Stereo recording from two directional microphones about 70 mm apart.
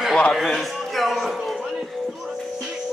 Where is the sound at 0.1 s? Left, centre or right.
Centre.